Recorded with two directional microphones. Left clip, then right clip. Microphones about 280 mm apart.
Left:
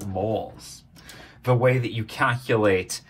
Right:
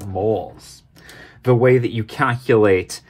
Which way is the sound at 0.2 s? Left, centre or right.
Right.